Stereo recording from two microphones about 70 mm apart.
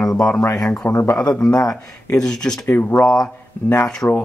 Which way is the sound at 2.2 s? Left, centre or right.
Centre.